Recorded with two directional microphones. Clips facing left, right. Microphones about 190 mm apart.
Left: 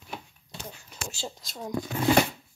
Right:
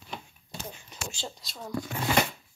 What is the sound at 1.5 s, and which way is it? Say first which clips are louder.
Speech: left 2 dB; 20° left (ahead or behind).